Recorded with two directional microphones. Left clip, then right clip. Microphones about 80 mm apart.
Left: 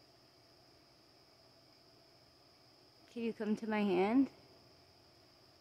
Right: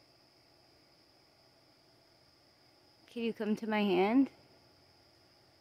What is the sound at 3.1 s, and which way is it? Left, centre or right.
Speech, right.